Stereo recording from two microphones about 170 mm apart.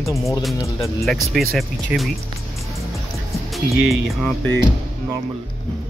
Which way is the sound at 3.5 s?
Centre (ahead or behind).